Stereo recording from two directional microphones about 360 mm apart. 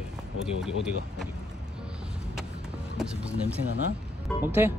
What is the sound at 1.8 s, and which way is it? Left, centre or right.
Vehicle, centre.